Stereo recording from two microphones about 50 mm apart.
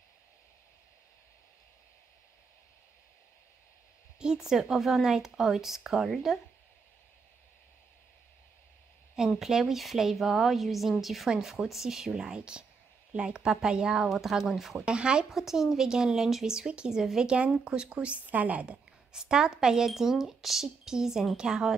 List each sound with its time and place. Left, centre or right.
4.2 s a woman's voice: centre
9.4 s a woman's voice: centre
14.9 s a woman's voice: centre
15.2 s a woman's voice: centre; by 18.8 s right
19.1 s speech: centre